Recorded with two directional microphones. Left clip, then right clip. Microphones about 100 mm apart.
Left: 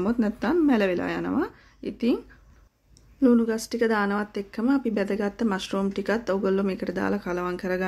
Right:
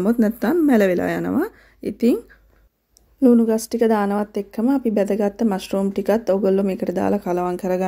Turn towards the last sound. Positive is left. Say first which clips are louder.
# right 6 dB
turn(degrees=-30)  # may be behind; listen again after turning